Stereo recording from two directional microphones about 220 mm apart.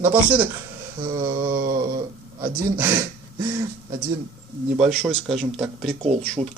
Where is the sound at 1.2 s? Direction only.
40° right (ahead or behind).